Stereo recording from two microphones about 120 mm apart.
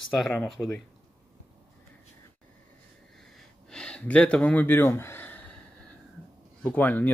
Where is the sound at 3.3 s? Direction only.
5° left (ahead or behind).